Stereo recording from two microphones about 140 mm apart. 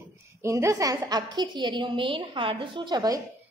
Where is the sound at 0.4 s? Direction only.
20° right (ahead or behind).